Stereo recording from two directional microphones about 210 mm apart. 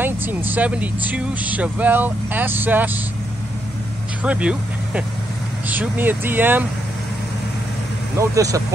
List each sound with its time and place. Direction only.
0.0 s speech: 10° right (ahead or behind)
4.2 s speech: 5° right (ahead or behind)
8.2 s speech: 15° right (ahead or behind)